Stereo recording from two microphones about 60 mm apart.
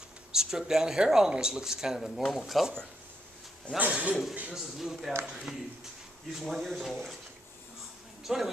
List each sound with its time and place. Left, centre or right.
0.3 s speech: centre
3.7 s a man's voice: right
4.1 s speech: centre
8.2 s a sound: centre